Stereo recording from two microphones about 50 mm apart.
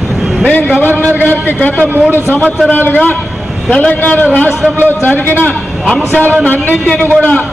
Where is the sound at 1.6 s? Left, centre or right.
Left.